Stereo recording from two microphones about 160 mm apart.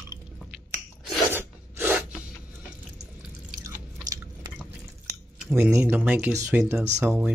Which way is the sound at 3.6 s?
20° right (ahead or behind).